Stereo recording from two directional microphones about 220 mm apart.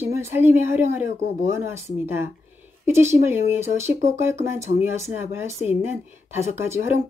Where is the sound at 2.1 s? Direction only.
10° right (ahead or behind).